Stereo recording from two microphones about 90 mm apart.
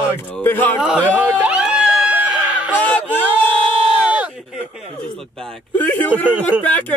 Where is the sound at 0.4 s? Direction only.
20° left (ahead or behind).